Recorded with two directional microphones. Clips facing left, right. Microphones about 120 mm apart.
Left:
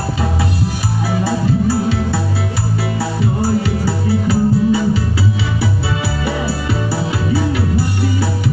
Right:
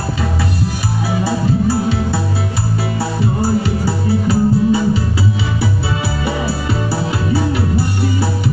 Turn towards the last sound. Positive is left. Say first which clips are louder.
# even
turn(degrees=-25)  # may be behind; listen again after turning